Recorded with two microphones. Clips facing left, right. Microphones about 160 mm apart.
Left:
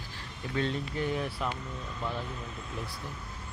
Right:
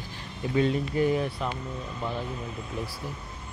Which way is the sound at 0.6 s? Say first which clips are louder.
Right 7 dB; 10° right (ahead or behind).